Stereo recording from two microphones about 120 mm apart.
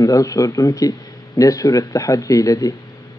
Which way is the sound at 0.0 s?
30° left (ahead or behind).